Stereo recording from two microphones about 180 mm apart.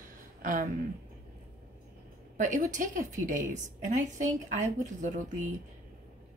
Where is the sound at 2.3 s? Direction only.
45° right (ahead or behind).